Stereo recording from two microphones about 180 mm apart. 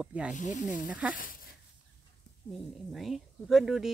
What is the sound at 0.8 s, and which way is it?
Speech, 5° right (ahead or behind).